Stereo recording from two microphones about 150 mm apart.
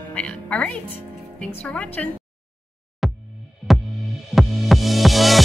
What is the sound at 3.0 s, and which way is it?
Music, centre (ahead or behind).